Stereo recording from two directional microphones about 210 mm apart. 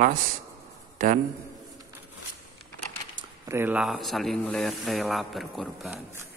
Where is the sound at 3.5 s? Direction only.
10° right (ahead or behind).